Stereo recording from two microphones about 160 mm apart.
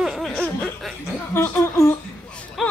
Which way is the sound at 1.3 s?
15° left (ahead or behind).